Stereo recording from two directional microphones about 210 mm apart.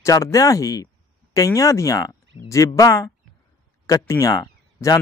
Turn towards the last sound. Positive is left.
turn(degrees=15)  # may be behind; listen again after turning